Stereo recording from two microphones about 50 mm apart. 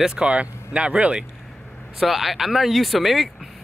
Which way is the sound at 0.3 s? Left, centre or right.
Right.